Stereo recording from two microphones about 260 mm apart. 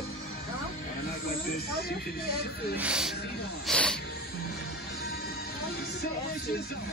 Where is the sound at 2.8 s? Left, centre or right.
Centre.